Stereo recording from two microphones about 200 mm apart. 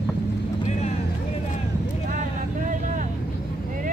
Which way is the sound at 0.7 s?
35° left (ahead or behind).